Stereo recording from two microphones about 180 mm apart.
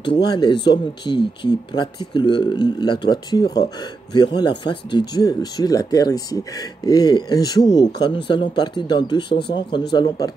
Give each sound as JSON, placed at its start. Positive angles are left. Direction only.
{"t": 0.0, "sound": "speech", "side_deg": 25}